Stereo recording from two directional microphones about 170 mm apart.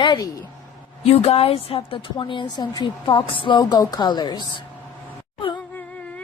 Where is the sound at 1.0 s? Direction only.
35° left (ahead or behind).